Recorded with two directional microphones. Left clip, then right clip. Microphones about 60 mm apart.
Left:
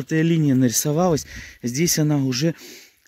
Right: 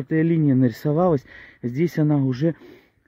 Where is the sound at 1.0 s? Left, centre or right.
Centre.